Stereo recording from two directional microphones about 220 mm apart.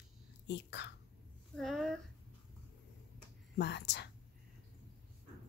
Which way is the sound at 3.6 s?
50° left (ahead or behind).